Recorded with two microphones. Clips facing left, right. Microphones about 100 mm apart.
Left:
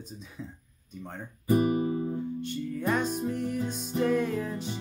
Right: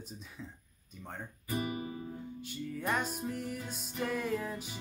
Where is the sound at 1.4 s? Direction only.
35° left (ahead or behind).